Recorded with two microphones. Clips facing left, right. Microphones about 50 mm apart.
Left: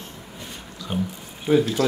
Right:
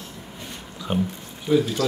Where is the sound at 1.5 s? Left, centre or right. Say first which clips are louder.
Left 1 dB; centre.